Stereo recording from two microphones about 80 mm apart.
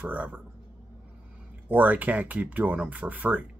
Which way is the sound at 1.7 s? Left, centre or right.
Right.